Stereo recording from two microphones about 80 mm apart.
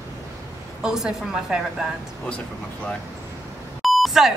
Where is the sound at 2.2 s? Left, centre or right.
Centre.